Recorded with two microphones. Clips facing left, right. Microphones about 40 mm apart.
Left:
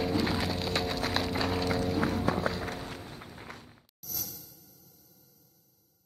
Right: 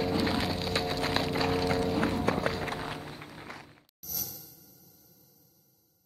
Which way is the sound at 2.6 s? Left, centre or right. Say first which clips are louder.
Right 3 dB; right.